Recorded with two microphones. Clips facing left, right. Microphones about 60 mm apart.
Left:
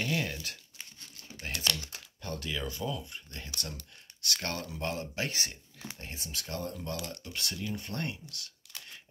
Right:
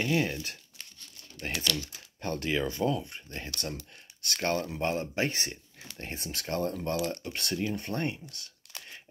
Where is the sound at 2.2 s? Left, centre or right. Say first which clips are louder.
Right 7 dB; right.